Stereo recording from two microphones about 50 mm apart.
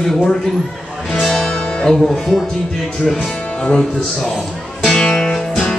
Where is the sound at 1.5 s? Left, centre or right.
Centre.